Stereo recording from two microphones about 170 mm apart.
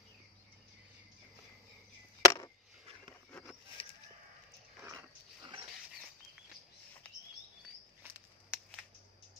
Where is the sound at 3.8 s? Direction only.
35° left (ahead or behind).